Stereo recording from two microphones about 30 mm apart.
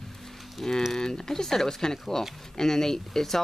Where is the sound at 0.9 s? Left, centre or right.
Left.